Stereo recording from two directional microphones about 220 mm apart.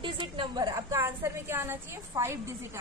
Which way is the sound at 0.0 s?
20° right (ahead or behind).